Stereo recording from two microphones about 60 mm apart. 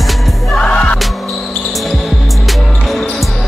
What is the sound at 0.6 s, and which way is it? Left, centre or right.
Music, centre.